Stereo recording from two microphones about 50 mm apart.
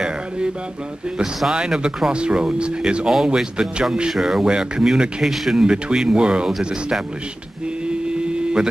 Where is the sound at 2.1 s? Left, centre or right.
Centre.